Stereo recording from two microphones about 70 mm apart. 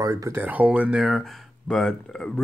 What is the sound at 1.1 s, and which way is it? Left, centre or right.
Speech, centre.